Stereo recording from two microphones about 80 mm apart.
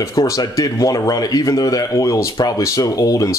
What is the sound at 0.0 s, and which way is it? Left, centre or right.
Speech, left.